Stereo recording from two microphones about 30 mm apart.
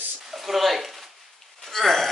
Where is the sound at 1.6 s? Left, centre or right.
Centre.